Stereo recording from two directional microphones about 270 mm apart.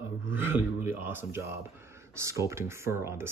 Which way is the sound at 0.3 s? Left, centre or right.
Centre.